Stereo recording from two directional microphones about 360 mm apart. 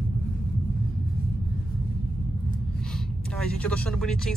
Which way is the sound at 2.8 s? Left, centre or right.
Centre.